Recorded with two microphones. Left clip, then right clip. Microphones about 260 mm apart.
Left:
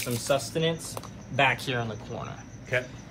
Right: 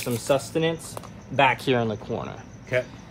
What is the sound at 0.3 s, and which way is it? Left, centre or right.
Speech, right.